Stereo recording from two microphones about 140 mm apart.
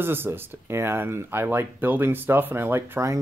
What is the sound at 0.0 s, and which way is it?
Speech, 15° right (ahead or behind).